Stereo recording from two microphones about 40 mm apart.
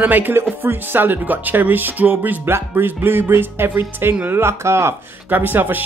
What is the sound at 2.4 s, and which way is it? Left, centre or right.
Speech, right.